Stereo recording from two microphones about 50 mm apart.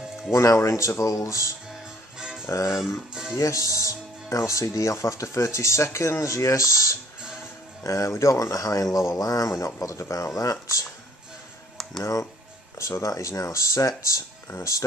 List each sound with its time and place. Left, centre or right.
0.3 s speech: left
1.7 s music: centre
2.5 s speech: left
6.2 s speech: left
12.0 s speech: left
12.7 s speech: left